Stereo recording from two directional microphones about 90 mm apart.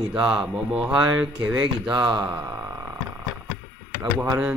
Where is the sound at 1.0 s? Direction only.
30° right (ahead or behind).